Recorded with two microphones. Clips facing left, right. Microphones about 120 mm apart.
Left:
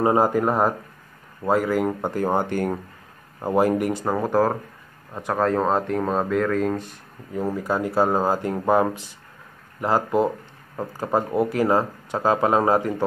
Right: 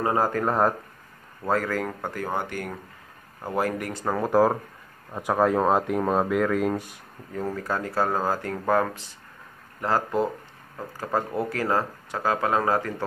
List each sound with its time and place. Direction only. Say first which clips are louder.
0.0 s speech: left 5 dB; 20° left (ahead or behind)
3.3 s speech: left 7 dB; 25° left (ahead or behind)
4.3 s speech: right 3 dB; 5° right (ahead or behind)
7.3 s speech: left 4 dB; 10° left (ahead or behind)